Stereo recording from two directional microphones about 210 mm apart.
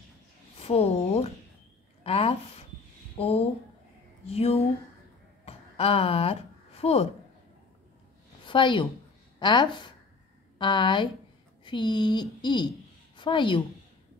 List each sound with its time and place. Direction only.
0.6 s speech: 30° left (ahead or behind)
5.4 s a sound: 30° left (ahead or behind)
8.5 s a woman's voice: 25° left (ahead or behind)